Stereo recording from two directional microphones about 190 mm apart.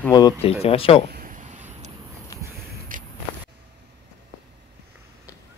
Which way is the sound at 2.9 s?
45° right (ahead or behind).